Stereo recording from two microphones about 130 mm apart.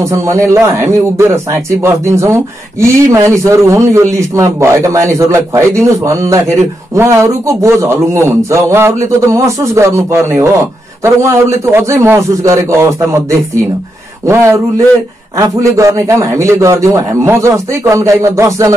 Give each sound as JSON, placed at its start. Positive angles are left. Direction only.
{"t": 0.0, "sound": "a man's voice", "side_deg": -25}